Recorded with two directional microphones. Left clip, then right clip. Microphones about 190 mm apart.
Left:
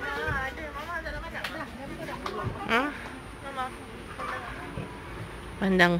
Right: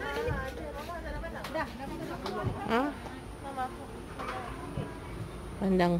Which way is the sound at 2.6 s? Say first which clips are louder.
Left 4 dB; 15° right (ahead or behind).